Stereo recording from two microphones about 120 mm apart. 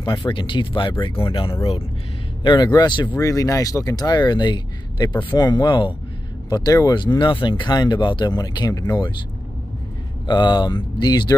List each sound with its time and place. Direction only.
0.0 s speech: 40° left (ahead or behind)
3.2 s speech: 30° left (ahead or behind)
7.2 s speech: 40° left (ahead or behind)
10.2 s speech: 40° left (ahead or behind)